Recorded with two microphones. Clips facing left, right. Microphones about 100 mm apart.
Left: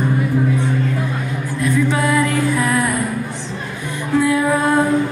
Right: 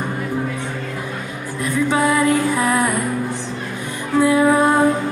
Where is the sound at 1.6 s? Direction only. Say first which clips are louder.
Even; 20° right (ahead or behind).